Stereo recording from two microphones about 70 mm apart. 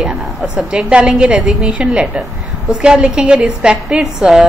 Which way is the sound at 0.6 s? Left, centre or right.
Centre.